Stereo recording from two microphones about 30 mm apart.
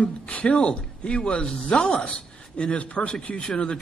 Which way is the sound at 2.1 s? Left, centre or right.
Left.